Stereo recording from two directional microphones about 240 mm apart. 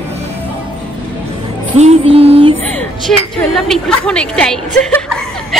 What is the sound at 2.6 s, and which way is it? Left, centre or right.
A woman's voice, centre.